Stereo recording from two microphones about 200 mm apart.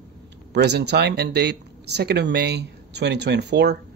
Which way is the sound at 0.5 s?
55° right (ahead or behind).